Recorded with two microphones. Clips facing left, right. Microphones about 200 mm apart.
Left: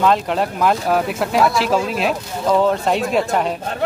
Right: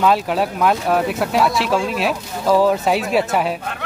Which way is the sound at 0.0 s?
5° right (ahead or behind).